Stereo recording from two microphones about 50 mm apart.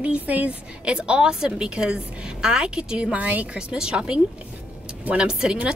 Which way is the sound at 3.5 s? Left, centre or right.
Centre.